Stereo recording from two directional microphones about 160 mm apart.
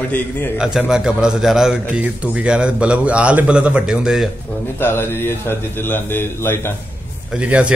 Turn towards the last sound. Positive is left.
turn(degrees=-5)  # may be behind; listen again after turning